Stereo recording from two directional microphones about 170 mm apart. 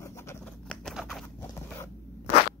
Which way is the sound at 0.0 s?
15° left (ahead or behind).